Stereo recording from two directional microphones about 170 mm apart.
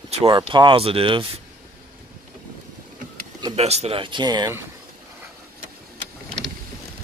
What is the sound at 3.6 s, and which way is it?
Speech, 35° right (ahead or behind).